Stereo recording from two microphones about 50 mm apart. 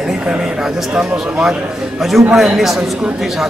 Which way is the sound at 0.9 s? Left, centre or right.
Centre.